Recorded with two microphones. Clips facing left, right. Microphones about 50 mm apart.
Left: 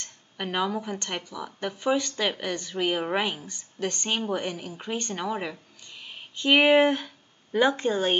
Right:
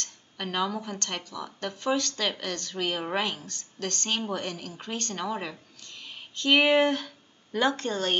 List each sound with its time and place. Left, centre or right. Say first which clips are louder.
0.0 s speech: left 2 dB; centre